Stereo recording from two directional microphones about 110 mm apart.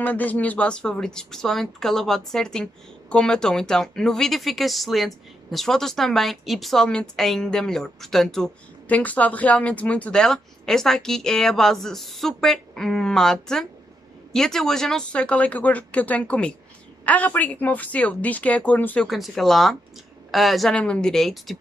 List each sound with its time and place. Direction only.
0.0 s speech: 15° left (ahead or behind)
19.0 s speech: centre (ahead or behind)